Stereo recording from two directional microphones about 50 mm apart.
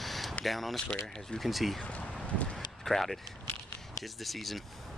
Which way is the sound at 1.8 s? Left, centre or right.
Left.